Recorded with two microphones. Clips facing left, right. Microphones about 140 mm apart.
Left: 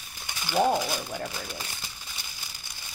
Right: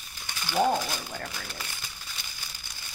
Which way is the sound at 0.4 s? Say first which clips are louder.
Left 1 dB; 10° left (ahead or behind).